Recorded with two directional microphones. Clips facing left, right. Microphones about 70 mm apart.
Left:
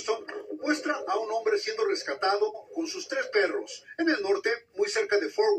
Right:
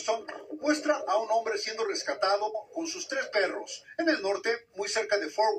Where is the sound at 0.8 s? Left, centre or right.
Left.